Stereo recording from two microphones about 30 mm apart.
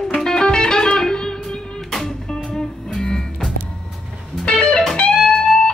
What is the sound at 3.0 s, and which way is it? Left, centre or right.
Music, left.